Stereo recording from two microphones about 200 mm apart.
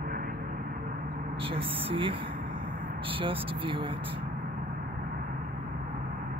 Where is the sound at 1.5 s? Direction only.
25° right (ahead or behind).